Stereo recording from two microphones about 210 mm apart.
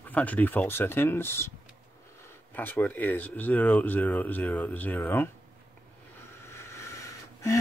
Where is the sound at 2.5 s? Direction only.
10° left (ahead or behind).